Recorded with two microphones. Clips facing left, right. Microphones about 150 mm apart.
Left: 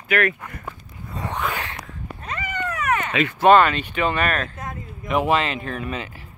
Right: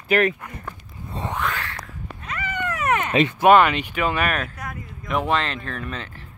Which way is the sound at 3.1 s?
30° right (ahead or behind).